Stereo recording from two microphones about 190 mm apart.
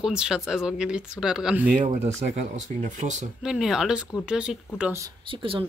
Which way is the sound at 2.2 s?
35° right (ahead or behind).